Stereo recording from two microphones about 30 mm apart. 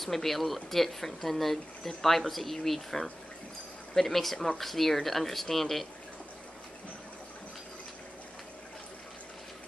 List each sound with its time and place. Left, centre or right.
0.0 s speech: centre